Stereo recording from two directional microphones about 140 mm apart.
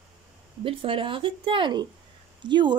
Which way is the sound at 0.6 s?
40° right (ahead or behind).